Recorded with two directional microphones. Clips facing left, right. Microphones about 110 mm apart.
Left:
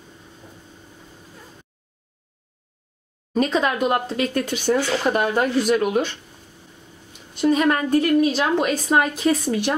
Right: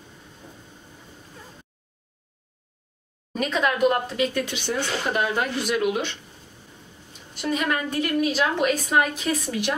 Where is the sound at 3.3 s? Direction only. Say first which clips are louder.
Left 4 dB; 30° left (ahead or behind).